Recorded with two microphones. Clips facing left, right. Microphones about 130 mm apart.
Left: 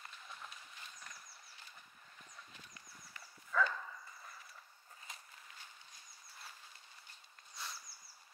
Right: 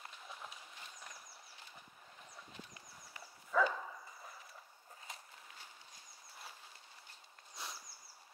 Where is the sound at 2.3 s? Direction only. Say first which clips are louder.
Right 5 dB; 15° right (ahead or behind).